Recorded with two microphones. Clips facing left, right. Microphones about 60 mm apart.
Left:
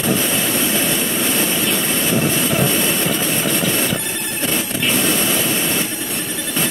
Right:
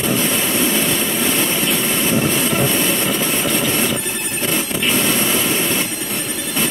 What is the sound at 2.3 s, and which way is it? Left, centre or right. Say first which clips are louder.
Vehicle: even; right.